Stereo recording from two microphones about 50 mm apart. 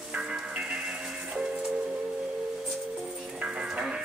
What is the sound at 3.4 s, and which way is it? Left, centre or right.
Music, centre.